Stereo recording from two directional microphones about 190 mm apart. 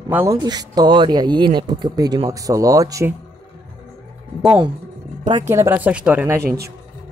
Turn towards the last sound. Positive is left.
turn(degrees=-55)  # may be behind; listen again after turning